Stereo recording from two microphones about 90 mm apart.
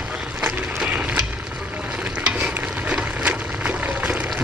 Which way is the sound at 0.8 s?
15° right (ahead or behind).